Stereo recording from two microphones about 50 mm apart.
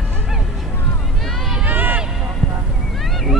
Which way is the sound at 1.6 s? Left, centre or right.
Right.